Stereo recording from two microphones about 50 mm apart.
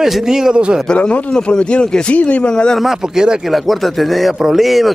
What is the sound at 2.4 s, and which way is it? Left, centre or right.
Speech, centre.